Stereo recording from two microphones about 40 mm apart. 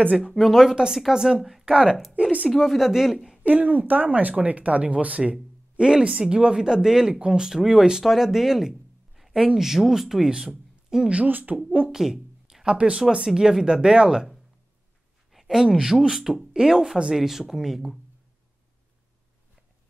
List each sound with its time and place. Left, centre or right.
0.3 s speech: centre
2.5 s speech: centre
2.8 s speech: centre
3.4 s speech: right
5.3 s speech: centre
7.2 s speech: right
7.4 s speech: centre
8.0 s speech: centre
11.2 s speech: right
11.9 s a sound: centre
13.1 s speech: centre
15.4 s speech: centre